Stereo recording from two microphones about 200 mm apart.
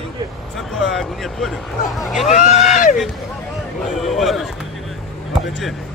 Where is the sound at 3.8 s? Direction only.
Centre (ahead or behind).